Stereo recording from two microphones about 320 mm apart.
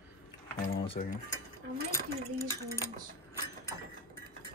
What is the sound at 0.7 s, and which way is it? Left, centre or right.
Speech, centre.